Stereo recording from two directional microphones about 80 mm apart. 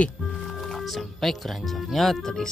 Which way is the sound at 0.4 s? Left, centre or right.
Centre.